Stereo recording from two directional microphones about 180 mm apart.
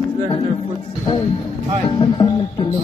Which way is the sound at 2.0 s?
30° left (ahead or behind).